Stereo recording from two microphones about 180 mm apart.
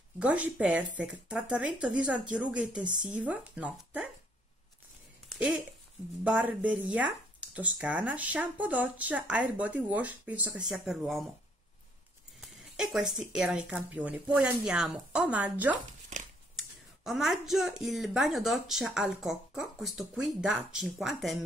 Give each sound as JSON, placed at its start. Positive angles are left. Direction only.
{"t": 0.2, "sound": "speech", "side_deg": -5}
{"t": 5.3, "sound": "a sound", "side_deg": 0}
{"t": 6.2, "sound": "speech", "side_deg": -5}
{"t": 12.4, "sound": "a sound", "side_deg": 0}
{"t": 13.0, "sound": "a woman's voice", "side_deg": -45}
{"t": 13.3, "sound": "speech", "side_deg": -5}